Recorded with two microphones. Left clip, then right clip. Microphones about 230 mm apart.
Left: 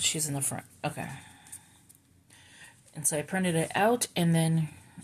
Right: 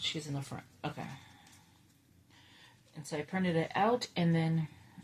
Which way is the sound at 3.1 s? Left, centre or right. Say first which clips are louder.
Left 4 dB; left.